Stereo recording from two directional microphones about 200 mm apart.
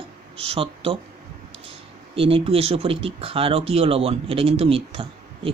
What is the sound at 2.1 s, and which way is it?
Speech, 30° right (ahead or behind).